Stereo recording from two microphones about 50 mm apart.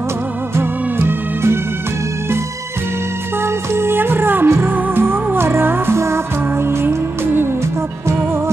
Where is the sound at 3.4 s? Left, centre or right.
Right.